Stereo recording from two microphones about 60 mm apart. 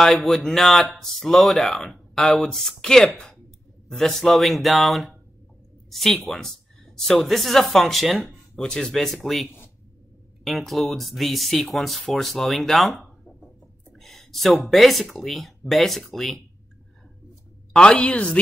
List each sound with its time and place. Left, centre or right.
0.0 s speech: centre
17.7 s a woman's voice: centre